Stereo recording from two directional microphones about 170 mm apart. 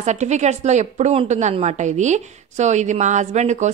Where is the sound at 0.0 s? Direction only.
45° right (ahead or behind).